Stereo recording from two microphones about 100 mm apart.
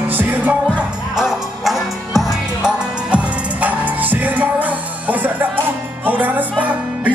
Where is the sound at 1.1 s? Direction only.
5° right (ahead or behind).